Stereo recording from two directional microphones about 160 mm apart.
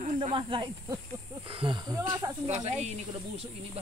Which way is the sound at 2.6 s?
40° right (ahead or behind).